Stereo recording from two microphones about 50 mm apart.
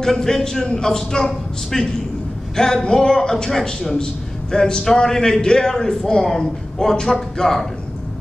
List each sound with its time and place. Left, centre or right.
0.0 s a man's voice: centre